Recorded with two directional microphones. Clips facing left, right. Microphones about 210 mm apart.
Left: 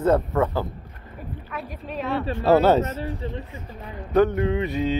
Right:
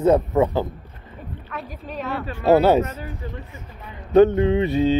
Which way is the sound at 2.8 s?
30° left (ahead or behind).